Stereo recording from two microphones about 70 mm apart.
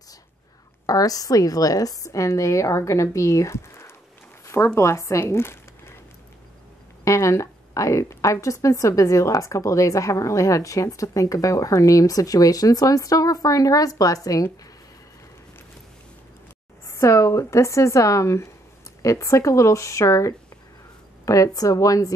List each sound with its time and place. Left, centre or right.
0.8 s a woman's voice: left
7.1 s a woman's voice: left
16.8 s a woman's voice: left